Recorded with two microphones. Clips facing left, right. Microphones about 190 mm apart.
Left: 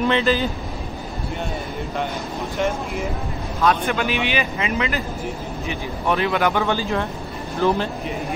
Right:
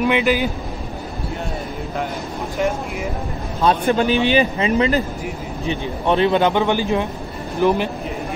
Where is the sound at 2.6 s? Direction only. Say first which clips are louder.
Right 2 dB; centre (ahead or behind).